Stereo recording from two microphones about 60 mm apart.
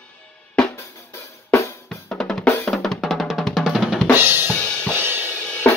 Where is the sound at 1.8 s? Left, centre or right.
Centre.